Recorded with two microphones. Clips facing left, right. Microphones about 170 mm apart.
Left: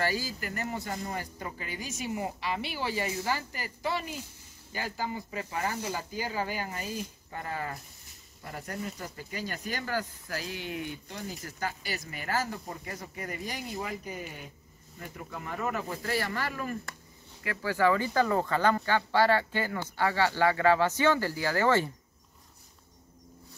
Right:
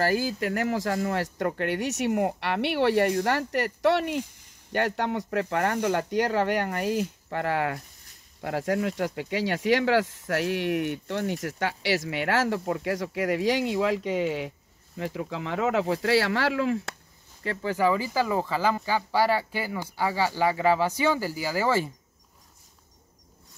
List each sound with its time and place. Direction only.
0.0 s speech: 55° right (ahead or behind); by 16.9 s 85° right
17.4 s speech: 25° right (ahead or behind)
17.9 s speech: 5° right (ahead or behind)